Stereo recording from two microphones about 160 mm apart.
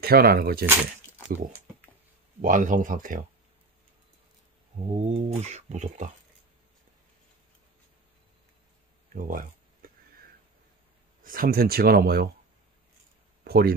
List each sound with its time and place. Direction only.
0.0 s speech: 75° right (ahead or behind)
2.4 s speech: 55° right (ahead or behind)
4.7 s speech: 40° right (ahead or behind)
9.1 s a sound: 60° right (ahead or behind)
11.2 s speech: 65° right (ahead or behind)
13.4 s speech: 75° right (ahead or behind)